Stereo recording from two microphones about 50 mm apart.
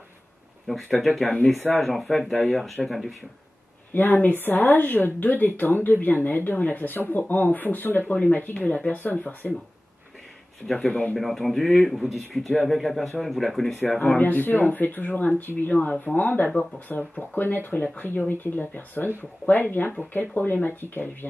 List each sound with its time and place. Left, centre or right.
0.9 s speech: centre
3.9 s speech: left
11.1 s speech: centre
13.9 s speech: left